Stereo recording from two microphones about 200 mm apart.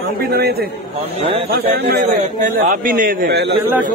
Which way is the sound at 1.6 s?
40° right (ahead or behind).